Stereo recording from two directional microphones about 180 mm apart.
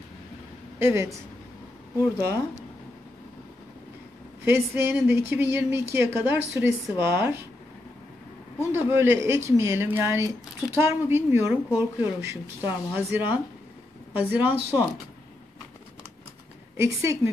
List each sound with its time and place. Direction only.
0.7 s speech: 15° right (ahead or behind)
4.5 s speech: 15° right (ahead or behind)
8.5 s speech: 15° right (ahead or behind)
16.7 s speech: 15° right (ahead or behind)